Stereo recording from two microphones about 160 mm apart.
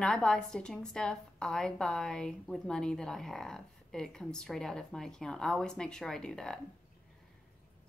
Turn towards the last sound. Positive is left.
turn(degrees=5)  # may be behind; listen again after turning